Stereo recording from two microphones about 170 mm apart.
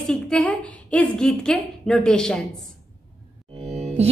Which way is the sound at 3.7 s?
40° right (ahead or behind).